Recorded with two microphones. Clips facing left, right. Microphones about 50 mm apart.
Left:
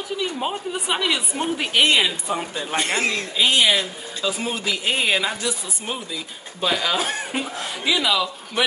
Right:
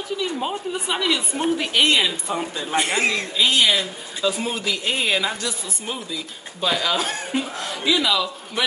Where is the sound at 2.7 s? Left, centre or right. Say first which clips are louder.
Right 2 dB; centre.